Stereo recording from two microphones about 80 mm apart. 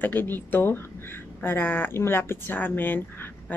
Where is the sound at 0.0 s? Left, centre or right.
Left.